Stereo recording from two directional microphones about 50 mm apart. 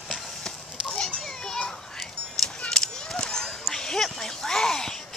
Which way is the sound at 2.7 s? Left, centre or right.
Centre.